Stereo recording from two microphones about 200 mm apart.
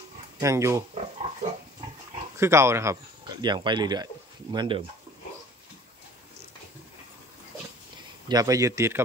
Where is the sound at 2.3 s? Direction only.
15° right (ahead or behind).